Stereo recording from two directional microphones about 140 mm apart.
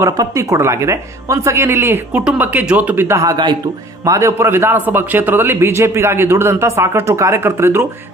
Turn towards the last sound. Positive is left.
turn(degrees=-20)  # may be behind; listen again after turning